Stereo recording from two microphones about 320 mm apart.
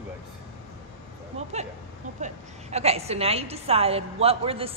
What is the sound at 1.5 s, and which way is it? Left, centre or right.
A woman's voice, right.